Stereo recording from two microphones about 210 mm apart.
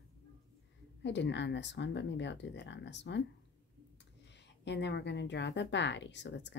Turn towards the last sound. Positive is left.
turn(degrees=55)  # may be behind; listen again after turning